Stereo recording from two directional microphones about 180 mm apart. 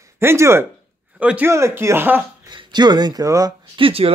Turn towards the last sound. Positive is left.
turn(degrees=-30)  # may be behind; listen again after turning